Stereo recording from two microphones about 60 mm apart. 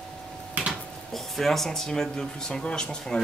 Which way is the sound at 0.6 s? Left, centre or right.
Right.